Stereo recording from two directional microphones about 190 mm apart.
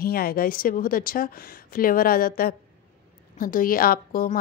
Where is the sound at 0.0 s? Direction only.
50° left (ahead or behind).